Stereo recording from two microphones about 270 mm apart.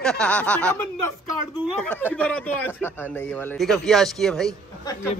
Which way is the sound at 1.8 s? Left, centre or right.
Centre.